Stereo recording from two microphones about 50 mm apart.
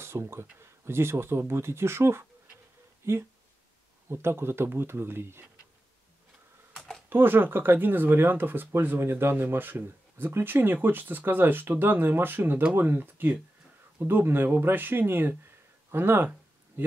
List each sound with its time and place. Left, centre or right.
0.0 s speech: right
7.1 s speech: right